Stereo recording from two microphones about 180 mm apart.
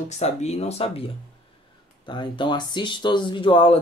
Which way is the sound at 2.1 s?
25° left (ahead or behind).